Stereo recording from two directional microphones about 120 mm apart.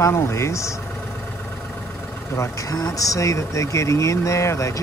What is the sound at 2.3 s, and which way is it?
Speech, 25° left (ahead or behind).